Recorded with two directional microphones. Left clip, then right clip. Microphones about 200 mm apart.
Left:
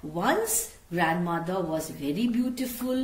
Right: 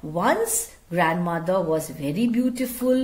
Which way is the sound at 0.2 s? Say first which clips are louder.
Right 4 dB; 55° right (ahead or behind).